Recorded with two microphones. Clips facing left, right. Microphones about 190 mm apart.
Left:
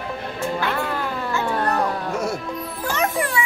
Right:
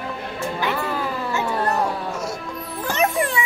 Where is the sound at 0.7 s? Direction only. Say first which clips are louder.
Even; centre (ahead or behind).